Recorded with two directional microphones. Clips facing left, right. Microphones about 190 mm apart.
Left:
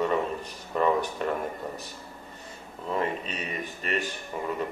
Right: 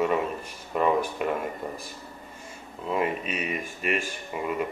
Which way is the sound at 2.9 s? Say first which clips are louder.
Right 2 dB; 10° right (ahead or behind).